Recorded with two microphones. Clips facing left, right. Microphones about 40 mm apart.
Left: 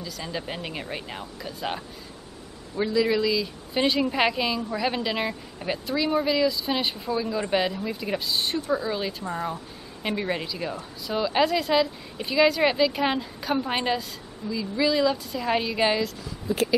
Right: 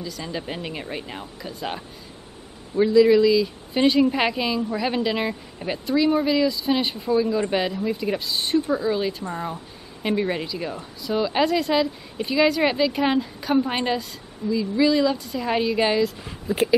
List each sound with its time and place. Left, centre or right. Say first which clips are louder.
0.0 s a woman's voice: right 2 dB; centre
2.8 s a woman's voice: right 8 dB; centre
16.4 s speech: right 3 dB; centre